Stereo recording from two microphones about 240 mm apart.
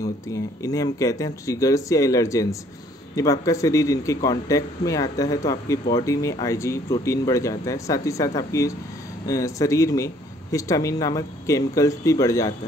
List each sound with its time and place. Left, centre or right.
0.0 s speech: centre